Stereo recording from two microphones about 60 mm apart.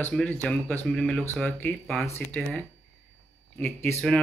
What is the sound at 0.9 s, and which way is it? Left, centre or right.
Speech, centre.